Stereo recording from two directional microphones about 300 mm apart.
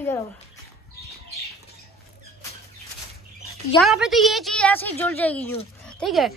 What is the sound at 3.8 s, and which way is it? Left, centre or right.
A woman's voice, centre.